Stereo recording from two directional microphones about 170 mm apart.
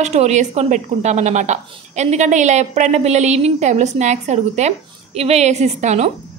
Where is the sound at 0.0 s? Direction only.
40° right (ahead or behind).